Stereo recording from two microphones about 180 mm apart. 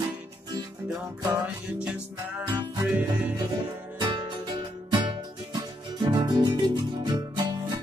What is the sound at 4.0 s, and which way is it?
Music, 25° right (ahead or behind).